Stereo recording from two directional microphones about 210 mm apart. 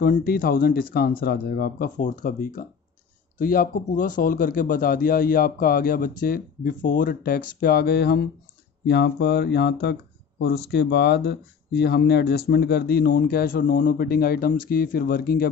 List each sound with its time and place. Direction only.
0.0 s speech: 45° left (ahead or behind)